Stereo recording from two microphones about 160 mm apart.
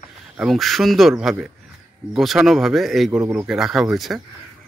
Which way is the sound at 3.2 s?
15° right (ahead or behind).